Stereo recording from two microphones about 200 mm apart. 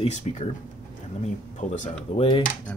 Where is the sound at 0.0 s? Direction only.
30° left (ahead or behind).